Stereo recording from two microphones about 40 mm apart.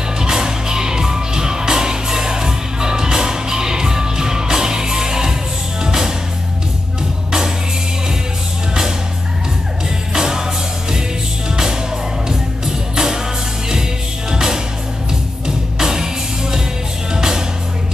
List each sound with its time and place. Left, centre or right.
0.2 s music: centre
10.1 s music: centre
14.3 s music: centre